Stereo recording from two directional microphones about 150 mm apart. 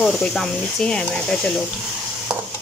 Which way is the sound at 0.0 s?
5° left (ahead or behind).